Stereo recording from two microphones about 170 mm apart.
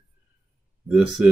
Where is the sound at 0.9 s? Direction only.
5° right (ahead or behind).